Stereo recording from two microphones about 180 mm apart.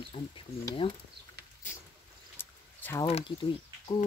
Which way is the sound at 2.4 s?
10° left (ahead or behind).